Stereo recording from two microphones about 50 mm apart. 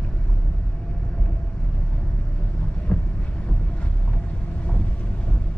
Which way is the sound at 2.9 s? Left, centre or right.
Centre.